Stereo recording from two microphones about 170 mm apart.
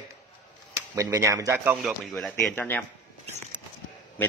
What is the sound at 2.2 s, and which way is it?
Speech, 5° left (ahead or behind).